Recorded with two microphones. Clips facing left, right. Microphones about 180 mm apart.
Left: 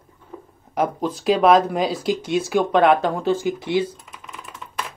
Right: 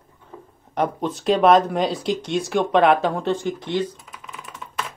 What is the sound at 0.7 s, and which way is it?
Speech, centre (ahead or behind).